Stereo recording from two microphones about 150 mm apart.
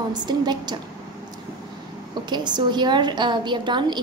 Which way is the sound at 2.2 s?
30° right (ahead or behind).